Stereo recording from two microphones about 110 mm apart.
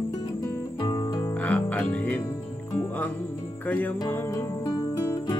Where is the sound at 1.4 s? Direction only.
15° left (ahead or behind).